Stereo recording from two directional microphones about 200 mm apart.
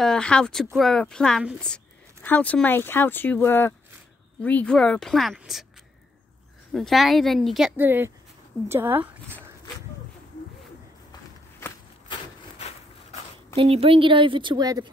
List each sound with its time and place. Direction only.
0.0 s speech: 5° left (ahead or behind)
6.7 s speech: centre (ahead or behind)
12.1 s wood: 30° left (ahead or behind)
13.6 s a woman's voice: 30° right (ahead or behind)